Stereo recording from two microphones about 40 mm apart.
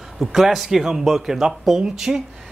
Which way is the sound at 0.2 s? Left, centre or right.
Centre.